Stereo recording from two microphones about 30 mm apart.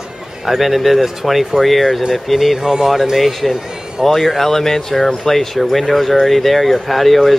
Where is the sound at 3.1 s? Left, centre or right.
Centre.